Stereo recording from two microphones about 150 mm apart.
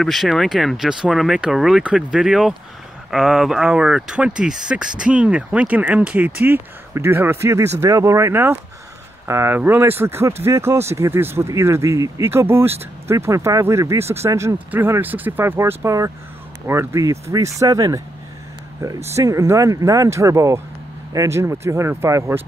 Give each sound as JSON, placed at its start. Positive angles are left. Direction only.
{"t": 0.0, "sound": "speech", "side_deg": 0}
{"t": 19.0, "sound": "speech", "side_deg": -20}